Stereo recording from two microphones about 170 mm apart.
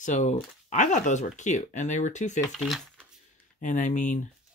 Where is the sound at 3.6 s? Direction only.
45° left (ahead or behind).